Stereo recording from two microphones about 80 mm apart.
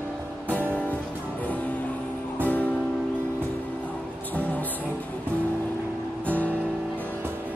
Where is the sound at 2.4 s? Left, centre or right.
Centre.